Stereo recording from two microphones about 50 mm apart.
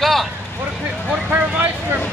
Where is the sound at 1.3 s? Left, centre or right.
Right.